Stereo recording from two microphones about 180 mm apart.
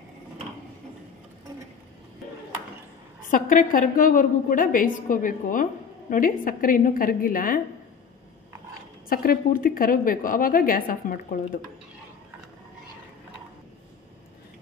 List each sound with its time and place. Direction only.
3.3 s a woman's voice: 50° left (ahead or behind)
9.1 s a woman's voice: 55° left (ahead or behind)